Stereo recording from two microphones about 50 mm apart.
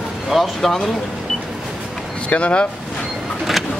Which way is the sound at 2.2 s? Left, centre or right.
Left.